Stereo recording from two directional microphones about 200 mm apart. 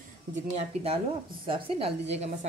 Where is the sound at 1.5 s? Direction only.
30° right (ahead or behind).